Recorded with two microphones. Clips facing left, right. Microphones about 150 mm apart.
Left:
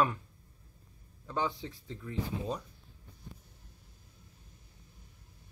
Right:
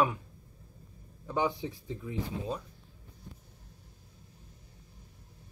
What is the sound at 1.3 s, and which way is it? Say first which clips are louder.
Speech: right 4 dB; 15° right (ahead or behind).